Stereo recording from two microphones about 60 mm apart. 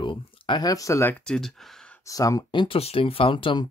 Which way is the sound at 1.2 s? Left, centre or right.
Centre.